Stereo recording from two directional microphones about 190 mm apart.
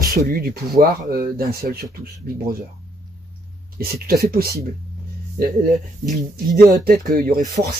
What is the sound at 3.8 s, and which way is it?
Speech, 55° right (ahead or behind).